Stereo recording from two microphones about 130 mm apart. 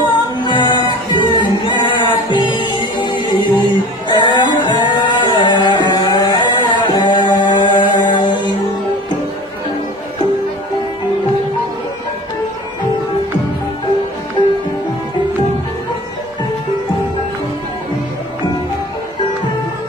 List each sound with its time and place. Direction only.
0.0 s music: 40° left (ahead or behind)